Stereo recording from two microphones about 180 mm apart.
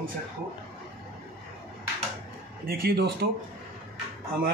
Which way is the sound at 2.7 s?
55° right (ahead or behind).